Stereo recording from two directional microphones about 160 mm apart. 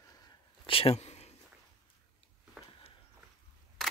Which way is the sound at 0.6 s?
35° left (ahead or behind).